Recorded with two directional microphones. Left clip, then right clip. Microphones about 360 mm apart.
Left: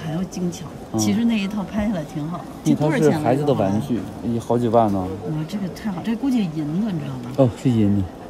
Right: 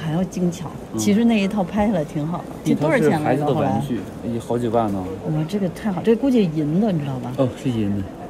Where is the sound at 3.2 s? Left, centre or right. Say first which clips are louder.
Left 1 dB; left.